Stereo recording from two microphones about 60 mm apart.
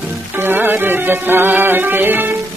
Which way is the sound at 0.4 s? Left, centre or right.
Right.